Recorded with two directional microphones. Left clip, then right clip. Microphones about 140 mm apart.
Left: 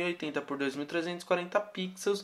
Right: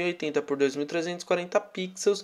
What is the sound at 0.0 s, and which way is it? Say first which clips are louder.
Speech: right 5 dB; 35° right (ahead or behind).